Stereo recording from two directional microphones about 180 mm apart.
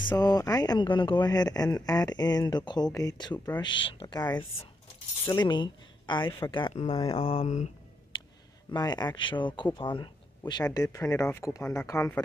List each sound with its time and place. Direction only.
0.1 s speech: 20° left (ahead or behind); by 7.7 s 40° left (ahead or behind)
8.7 s speech: 25° left (ahead or behind)